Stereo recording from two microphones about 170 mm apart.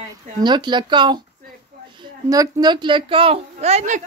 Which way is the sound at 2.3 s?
20° right (ahead or behind).